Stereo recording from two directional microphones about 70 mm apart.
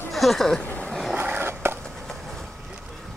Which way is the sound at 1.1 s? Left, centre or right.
Right.